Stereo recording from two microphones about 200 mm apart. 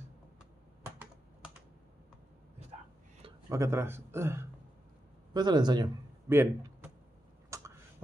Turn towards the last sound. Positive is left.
turn(degrees=-15)  # may be behind; listen again after turning